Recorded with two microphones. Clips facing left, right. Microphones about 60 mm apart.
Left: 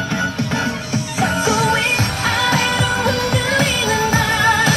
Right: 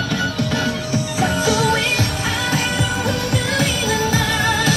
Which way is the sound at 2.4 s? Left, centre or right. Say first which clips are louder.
Left 3 dB; left.